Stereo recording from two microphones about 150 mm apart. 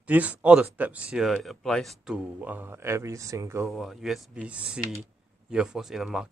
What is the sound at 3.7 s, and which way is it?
Speech, centre (ahead or behind).